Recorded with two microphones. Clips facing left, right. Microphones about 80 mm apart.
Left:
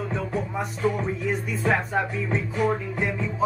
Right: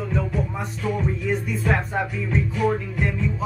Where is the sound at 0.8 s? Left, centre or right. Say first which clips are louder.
Left 2 dB; left.